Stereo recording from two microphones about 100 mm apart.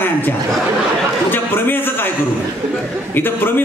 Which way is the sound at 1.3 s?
20° left (ahead or behind).